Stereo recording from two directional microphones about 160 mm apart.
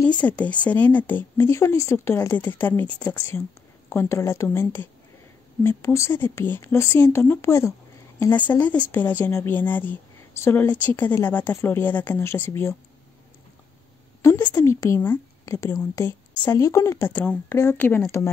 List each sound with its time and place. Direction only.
0.2 s speech: 10° left (ahead or behind)
14.2 s speech: 15° left (ahead or behind)